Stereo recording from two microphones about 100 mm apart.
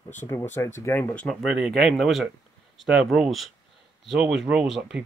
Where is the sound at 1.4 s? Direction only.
5° right (ahead or behind).